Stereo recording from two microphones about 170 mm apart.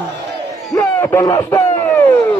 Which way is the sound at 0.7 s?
15° left (ahead or behind).